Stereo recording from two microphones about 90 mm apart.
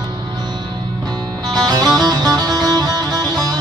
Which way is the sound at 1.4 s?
45° right (ahead or behind).